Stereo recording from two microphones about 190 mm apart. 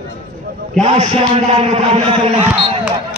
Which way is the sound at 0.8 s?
35° right (ahead or behind).